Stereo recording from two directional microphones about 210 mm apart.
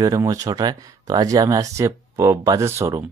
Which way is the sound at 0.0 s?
15° right (ahead or behind).